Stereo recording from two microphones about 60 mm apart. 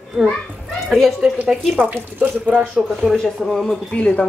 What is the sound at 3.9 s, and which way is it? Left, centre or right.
Speech, left.